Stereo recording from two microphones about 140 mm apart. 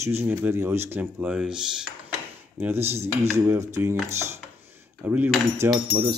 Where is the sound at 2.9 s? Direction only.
50° right (ahead or behind).